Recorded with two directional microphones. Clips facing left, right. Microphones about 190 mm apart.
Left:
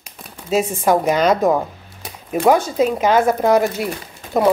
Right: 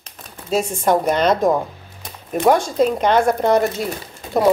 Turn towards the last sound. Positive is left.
turn(degrees=0)  # may be behind; listen again after turning